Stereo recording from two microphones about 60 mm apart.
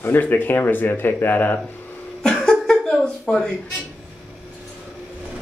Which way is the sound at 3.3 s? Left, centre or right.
Centre.